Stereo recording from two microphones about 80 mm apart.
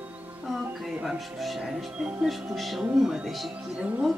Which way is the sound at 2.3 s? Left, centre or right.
Centre.